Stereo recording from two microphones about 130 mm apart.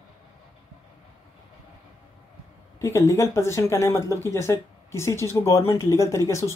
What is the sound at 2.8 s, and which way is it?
Speech, 25° left (ahead or behind).